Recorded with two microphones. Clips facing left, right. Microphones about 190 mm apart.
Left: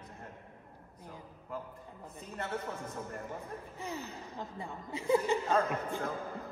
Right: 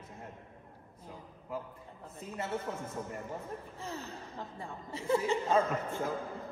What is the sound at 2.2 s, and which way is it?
Speech, 5° right (ahead or behind).